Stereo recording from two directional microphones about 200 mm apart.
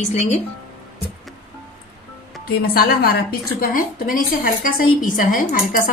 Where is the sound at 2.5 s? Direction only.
50° left (ahead or behind).